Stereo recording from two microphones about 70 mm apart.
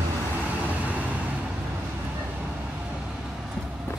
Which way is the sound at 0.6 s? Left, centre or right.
Right.